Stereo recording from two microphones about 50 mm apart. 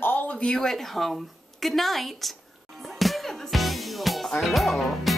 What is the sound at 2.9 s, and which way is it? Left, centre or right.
Music, centre.